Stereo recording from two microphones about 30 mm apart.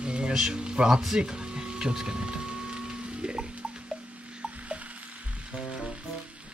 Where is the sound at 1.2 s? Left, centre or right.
Right.